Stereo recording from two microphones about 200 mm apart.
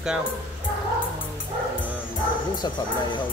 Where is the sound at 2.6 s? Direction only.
20° left (ahead or behind).